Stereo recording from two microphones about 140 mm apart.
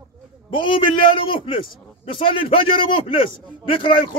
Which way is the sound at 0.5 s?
35° left (ahead or behind).